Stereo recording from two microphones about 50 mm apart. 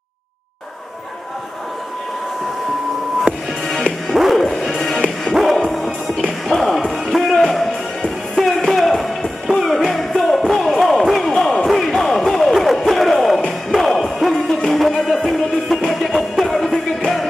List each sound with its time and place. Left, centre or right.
3.3 s music: right
4.1 s music: centre
5.3 s music: centre
11.8 s a sound: centre
13.7 s music: centre